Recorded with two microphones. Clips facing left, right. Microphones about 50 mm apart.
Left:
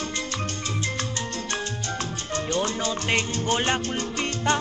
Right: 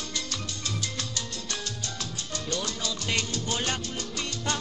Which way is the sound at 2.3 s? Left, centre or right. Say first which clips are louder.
Left 7 dB; left.